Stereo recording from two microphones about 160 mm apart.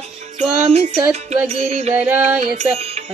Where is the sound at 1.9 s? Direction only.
10° right (ahead or behind).